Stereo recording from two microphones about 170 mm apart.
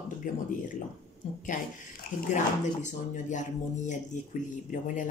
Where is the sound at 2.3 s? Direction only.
45° left (ahead or behind).